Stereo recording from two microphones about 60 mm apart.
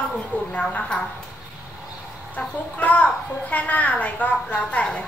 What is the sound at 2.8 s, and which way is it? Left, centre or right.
A woman's voice, left.